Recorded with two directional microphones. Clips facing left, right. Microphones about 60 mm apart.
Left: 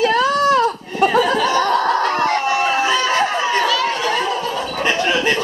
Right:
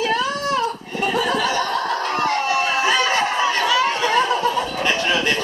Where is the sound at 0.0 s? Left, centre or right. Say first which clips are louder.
Left 6 dB; left.